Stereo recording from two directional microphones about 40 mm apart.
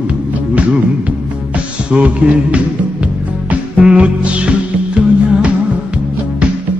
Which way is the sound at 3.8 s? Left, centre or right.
Right.